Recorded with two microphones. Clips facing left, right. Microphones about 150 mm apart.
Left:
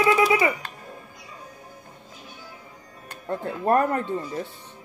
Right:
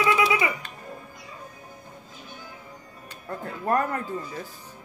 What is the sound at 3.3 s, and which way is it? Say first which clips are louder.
Speech: left 4 dB; 30° left (ahead or behind).